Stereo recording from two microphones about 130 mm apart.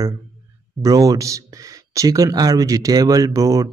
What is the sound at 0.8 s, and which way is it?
Speech, 25° right (ahead or behind).